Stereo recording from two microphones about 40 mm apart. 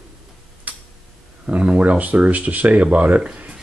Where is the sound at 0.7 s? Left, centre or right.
Right.